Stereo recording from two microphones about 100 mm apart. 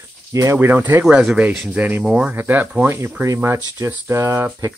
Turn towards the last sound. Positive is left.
turn(degrees=-30)  # may be behind; listen again after turning